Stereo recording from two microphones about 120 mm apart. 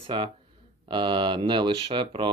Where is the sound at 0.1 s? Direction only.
40° right (ahead or behind).